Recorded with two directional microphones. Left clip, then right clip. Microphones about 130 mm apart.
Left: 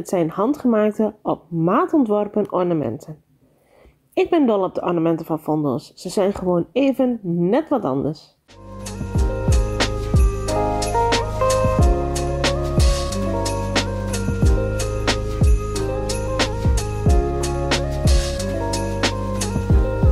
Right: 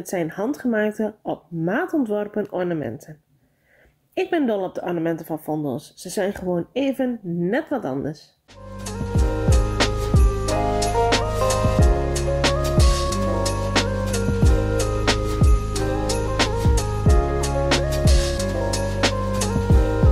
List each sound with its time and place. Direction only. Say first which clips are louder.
0.1 s speech: left 5 dB; 40° left (ahead or behind)
4.1 s speech: left 5 dB; 35° left (ahead or behind)
8.9 s music: right 1 dB; centre (ahead or behind)